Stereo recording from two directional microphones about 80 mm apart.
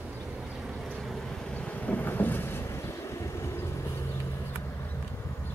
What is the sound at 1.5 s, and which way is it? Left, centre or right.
Vehicle, centre.